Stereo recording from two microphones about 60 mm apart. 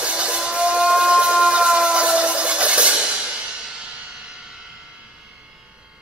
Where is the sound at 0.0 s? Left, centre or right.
Centre.